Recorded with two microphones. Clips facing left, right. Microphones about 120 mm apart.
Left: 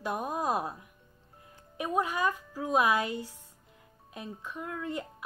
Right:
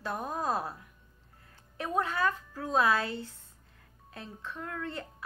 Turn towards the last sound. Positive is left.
turn(degrees=15)  # may be behind; listen again after turning